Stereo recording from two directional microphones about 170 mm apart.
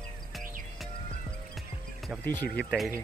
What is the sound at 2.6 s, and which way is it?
Speech, centre (ahead or behind).